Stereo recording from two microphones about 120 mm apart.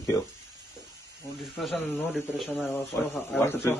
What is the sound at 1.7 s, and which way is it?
A man's voice, 15° left (ahead or behind).